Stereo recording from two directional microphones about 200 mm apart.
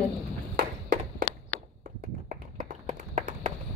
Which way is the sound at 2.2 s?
40° right (ahead or behind).